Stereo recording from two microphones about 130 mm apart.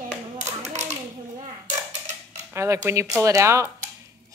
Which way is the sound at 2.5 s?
20° right (ahead or behind).